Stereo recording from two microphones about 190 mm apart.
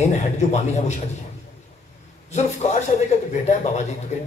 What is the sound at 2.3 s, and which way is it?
Speech, 35° left (ahead or behind).